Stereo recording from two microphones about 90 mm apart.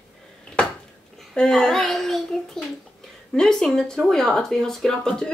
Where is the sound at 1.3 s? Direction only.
5° left (ahead or behind).